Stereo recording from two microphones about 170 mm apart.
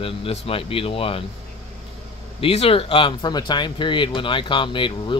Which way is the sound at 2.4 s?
35° left (ahead or behind).